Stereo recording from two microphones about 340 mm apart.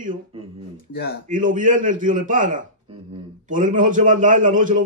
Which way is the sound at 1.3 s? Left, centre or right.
Right.